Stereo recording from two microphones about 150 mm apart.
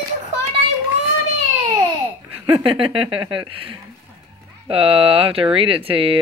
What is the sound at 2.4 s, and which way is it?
Speech, 35° right (ahead or behind).